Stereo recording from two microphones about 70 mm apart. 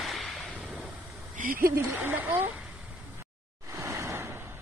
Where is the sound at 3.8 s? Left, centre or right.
Right.